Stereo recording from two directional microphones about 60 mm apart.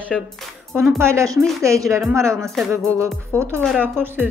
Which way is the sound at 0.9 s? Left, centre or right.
Right.